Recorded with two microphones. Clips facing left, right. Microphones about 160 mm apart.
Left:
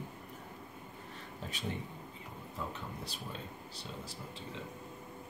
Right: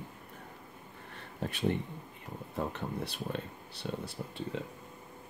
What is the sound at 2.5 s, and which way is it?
Speech, 65° right (ahead or behind).